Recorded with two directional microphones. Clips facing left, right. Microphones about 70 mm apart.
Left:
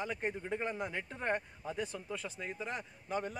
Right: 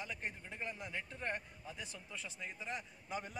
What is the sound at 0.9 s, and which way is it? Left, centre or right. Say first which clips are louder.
Speech: left 6 dB; left.